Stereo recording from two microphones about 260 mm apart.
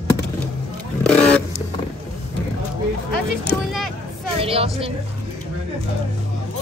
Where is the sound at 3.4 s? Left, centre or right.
Centre.